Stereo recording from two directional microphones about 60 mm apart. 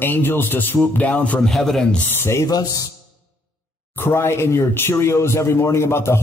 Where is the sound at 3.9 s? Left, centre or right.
Left.